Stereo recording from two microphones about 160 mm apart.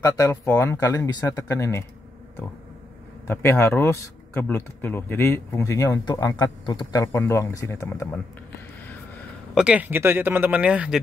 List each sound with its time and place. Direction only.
0.0 s a man's voice: 20° left (ahead or behind)
3.3 s a man's voice: 15° left (ahead or behind)
9.6 s speech: 10° right (ahead or behind)